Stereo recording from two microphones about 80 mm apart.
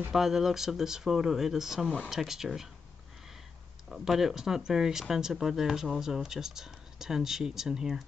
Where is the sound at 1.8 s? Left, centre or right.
Centre.